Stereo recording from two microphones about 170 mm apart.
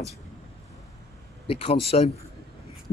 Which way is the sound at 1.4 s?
35° left (ahead or behind).